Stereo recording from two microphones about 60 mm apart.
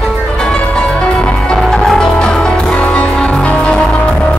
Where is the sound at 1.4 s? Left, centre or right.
Centre.